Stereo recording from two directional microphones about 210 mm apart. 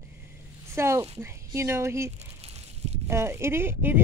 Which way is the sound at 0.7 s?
10° right (ahead or behind).